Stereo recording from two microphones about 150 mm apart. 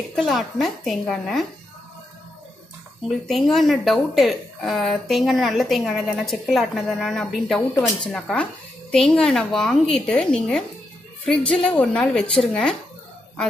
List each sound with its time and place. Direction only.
0.1 s speech: centre (ahead or behind)
3.1 s speech: centre (ahead or behind)